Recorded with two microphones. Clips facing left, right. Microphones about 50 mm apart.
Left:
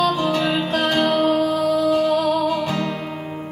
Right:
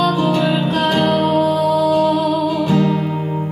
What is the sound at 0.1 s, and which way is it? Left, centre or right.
Music, right.